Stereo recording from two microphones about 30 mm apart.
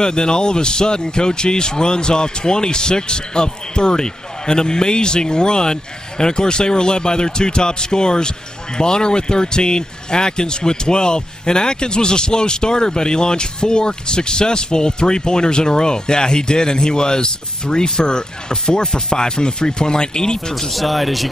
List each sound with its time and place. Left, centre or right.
0.0 s a man's voice: left
20.7 s speech: centre